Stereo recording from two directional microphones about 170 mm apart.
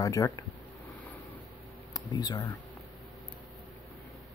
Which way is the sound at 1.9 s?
25° left (ahead or behind).